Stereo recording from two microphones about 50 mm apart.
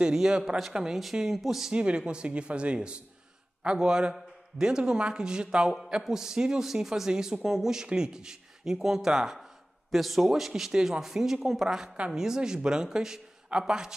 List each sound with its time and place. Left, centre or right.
0.1 s speech: centre
1.7 s speech: right